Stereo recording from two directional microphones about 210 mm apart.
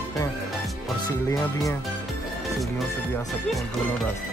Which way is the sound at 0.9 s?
20° left (ahead or behind).